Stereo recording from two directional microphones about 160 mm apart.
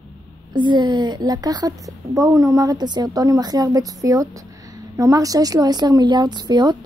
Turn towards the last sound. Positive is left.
turn(degrees=-25)  # may be behind; listen again after turning